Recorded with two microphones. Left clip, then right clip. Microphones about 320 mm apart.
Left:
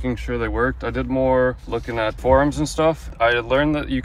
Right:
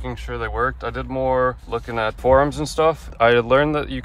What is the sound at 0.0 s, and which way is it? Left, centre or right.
Speech, centre.